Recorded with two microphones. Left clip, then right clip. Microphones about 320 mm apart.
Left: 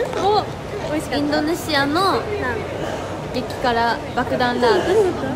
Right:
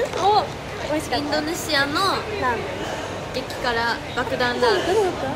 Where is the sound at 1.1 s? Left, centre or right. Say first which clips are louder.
Left 6 dB; centre.